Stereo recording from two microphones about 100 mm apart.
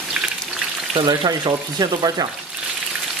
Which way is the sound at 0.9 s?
50° right (ahead or behind).